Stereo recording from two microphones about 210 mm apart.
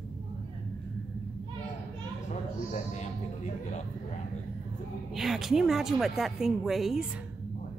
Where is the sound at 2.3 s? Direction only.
35° left (ahead or behind).